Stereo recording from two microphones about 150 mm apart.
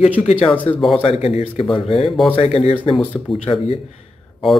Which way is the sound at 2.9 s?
5° left (ahead or behind).